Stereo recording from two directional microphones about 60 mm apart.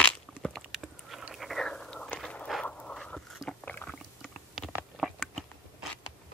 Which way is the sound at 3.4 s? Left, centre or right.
Left.